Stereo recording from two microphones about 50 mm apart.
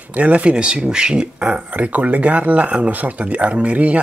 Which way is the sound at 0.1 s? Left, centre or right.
Right.